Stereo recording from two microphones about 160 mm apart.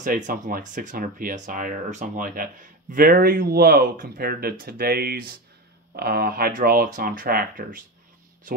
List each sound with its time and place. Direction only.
0.0 s speech: 60° right (ahead or behind)